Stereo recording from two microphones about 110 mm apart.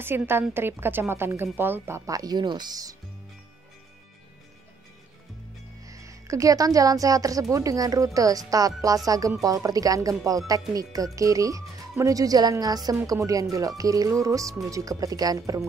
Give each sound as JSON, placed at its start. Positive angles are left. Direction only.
{"t": 0.3, "sound": "a woman's voice", "side_deg": -20}
{"t": 5.9, "sound": "speech", "side_deg": -30}